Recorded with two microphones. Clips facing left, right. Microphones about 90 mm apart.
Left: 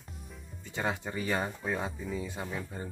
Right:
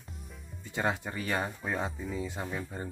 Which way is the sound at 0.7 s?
10° right (ahead or behind).